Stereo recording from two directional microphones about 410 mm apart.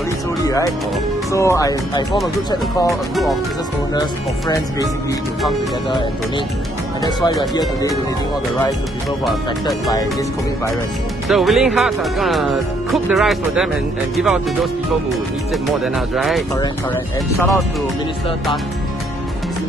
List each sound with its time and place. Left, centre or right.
1.3 s speech: centre
7.0 s speech: centre
9.2 s speech: centre
11.2 s speech: centre